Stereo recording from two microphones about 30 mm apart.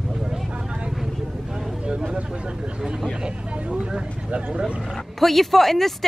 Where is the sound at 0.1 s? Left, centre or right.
Right.